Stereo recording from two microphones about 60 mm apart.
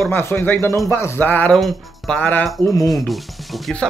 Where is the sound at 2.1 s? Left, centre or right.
Left.